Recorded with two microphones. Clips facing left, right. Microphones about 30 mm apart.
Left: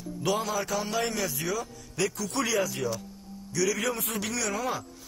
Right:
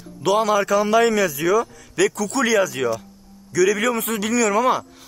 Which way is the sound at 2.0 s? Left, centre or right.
Right.